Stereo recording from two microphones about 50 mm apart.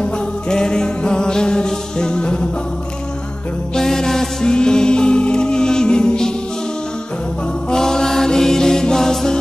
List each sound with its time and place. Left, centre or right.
0.0 s music: centre
3.7 s music: centre
7.7 s music: centre